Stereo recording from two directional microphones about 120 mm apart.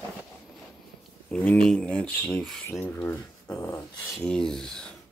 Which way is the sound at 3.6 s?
25° left (ahead or behind).